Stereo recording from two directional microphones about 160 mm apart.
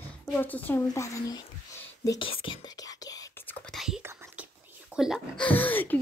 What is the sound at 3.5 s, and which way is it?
Whispering, centre (ahead or behind).